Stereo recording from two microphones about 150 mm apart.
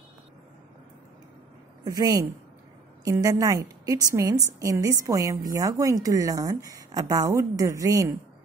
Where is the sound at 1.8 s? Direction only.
25° right (ahead or behind).